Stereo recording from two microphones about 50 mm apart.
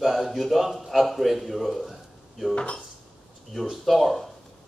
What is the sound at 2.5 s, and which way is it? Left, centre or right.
Speech, left.